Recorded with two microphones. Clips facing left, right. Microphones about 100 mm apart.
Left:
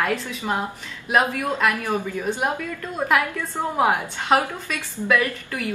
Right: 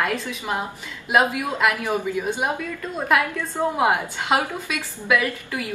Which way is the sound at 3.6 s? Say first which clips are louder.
Even; 15° right (ahead or behind).